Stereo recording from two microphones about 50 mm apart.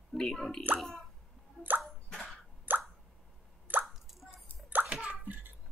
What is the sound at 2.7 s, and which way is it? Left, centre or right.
Plop, right.